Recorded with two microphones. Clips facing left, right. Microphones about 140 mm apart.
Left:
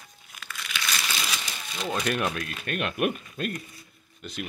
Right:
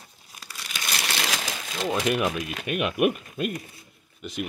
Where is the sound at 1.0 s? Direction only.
80° right.